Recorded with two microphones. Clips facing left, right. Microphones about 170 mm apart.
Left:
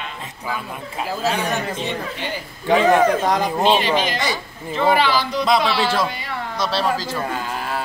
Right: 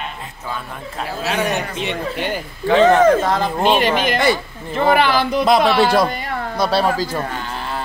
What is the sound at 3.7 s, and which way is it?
Speech, 55° right (ahead or behind).